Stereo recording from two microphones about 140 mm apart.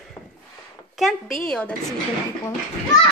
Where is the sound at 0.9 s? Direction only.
Centre (ahead or behind).